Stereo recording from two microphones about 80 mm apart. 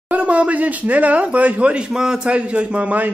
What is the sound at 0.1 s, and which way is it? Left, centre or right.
Speech, centre.